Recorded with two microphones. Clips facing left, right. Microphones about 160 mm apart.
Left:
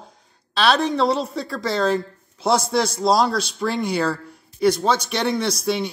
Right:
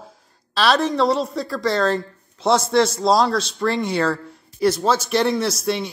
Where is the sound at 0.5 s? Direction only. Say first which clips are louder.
Right 1 dB; centre (ahead or behind).